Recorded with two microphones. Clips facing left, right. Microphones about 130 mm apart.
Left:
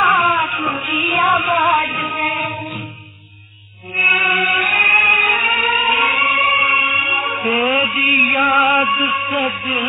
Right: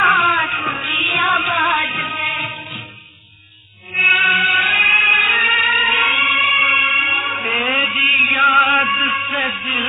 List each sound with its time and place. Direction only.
0.0 s music: 25° left (ahead or behind)
1.4 s child singing: 30° left (ahead or behind)
2.1 s music: 40° left (ahead or behind)
4.0 s choir: 35° left (ahead or behind)
6.0 s music: 35° left (ahead or behind)
6.6 s music: 20° left (ahead or behind)
7.9 s music: 40° left (ahead or behind)
8.7 s child singing: 25° left (ahead or behind)